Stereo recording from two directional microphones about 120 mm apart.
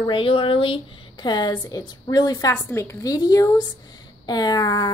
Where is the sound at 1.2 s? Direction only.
35° left (ahead or behind).